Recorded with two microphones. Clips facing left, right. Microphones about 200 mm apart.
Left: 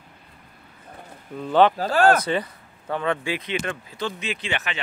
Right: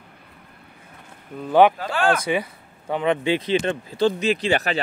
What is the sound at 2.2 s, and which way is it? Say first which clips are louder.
Speech: right 1 dB; 10° right (ahead or behind).